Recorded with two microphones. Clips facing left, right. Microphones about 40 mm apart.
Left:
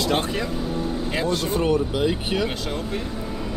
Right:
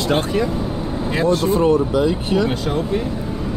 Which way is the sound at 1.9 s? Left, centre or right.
Left.